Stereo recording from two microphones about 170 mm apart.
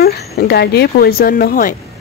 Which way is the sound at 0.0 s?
70° left (ahead or behind).